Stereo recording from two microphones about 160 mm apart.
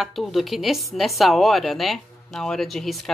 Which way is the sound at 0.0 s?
Centre (ahead or behind).